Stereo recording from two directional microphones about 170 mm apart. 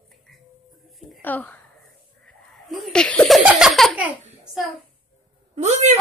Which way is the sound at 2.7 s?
Centre (ahead or behind).